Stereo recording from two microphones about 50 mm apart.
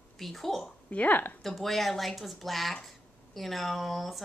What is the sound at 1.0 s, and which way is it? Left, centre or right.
Speech, left.